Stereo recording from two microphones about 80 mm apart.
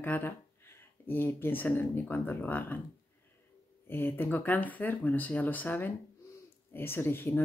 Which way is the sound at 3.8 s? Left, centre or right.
Left.